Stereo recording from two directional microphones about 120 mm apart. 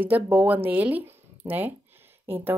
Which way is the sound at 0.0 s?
15° right (ahead or behind).